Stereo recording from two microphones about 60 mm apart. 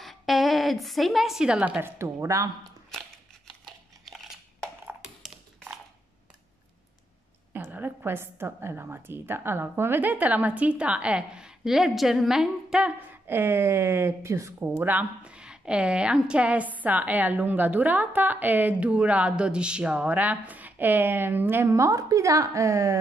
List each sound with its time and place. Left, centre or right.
0.0 s a woman's voice: centre
2.0 s a woman's voice: right
4.0 s a sound: centre
7.5 s a woman's voice: right; by 12.8 s centre
13.1 s speech: right
14.8 s speech: right
15.2 s a woman's voice: centre; by 21.7 s right
21.7 s a woman's voice: right